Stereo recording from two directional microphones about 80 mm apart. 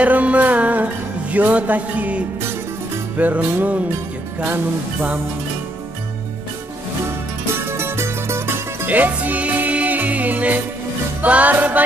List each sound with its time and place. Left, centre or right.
0.0 s music: centre
7.5 s music: right